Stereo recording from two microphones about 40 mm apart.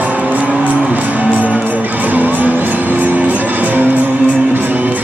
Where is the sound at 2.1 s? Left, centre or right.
Right.